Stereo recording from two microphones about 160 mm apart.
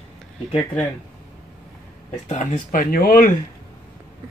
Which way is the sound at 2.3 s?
45° left (ahead or behind).